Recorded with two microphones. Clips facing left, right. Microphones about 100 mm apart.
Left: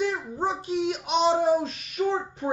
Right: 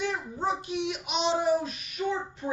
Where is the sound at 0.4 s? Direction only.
35° left (ahead or behind).